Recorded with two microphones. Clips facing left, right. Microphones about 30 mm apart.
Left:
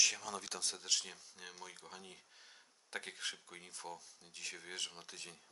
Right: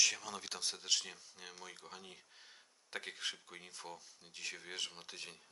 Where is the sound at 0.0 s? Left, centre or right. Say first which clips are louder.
Even; centre.